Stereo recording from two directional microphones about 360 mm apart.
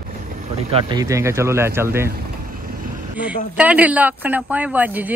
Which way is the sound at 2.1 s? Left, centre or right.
Right.